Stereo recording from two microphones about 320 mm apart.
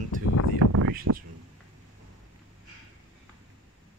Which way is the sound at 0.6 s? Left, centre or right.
Right.